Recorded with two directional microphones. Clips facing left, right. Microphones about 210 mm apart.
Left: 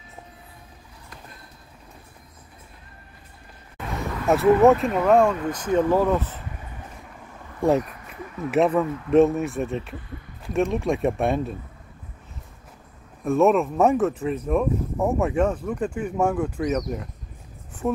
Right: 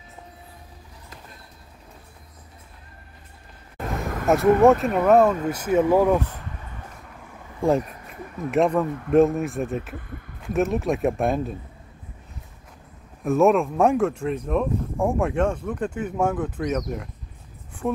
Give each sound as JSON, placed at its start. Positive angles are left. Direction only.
{"t": 3.7, "sound": "a sound", "side_deg": -50}
{"t": 4.3, "sound": "speech", "side_deg": 0}
{"t": 8.5, "sound": "speech", "side_deg": 0}
{"t": 9.9, "sound": "speech", "side_deg": -50}
{"t": 10.4, "sound": "speech", "side_deg": 0}
{"t": 13.2, "sound": "speech", "side_deg": 0}
{"t": 17.8, "sound": "speech", "side_deg": 0}